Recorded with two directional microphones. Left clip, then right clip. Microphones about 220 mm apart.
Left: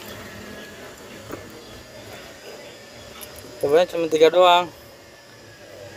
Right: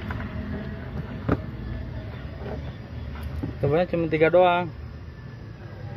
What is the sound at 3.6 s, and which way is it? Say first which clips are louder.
Speech: left 5 dB; 20° left (ahead or behind).